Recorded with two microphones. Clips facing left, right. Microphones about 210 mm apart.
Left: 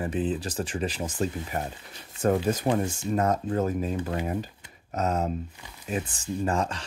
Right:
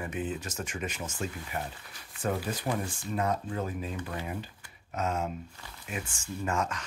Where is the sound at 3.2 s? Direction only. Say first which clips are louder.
Left 5 dB; 45° left (ahead or behind).